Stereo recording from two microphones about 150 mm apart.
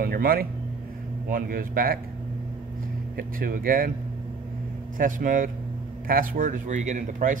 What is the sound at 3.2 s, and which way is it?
Speech, 70° right (ahead or behind).